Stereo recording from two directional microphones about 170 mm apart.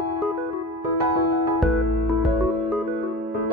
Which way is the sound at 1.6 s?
Centre (ahead or behind).